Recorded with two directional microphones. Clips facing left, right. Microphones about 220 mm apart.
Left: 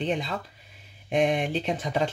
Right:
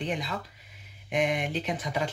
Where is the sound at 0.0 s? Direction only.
30° left (ahead or behind).